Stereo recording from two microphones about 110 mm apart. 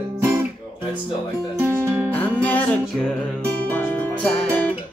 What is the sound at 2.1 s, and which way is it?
Music, 15° left (ahead or behind).